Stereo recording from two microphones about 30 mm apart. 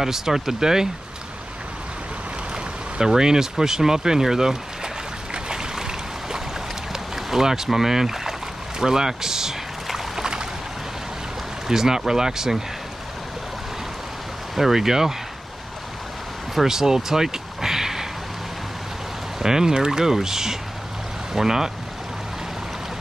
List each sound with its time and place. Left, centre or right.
0.0 s speech: centre
3.1 s speech: centre
5.3 s boat: right
8.7 s speech: centre
9.8 s boat: centre
11.6 s speech: centre
14.5 s speech: centre
16.6 s a sound: centre
19.4 s speech: centre